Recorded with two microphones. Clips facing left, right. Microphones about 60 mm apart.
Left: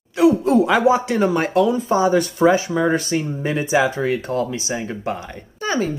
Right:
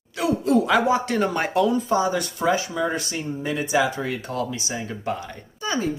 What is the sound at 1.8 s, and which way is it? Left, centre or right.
A child's voice, left.